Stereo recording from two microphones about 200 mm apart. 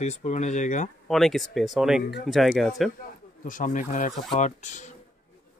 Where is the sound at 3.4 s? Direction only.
40° left (ahead or behind).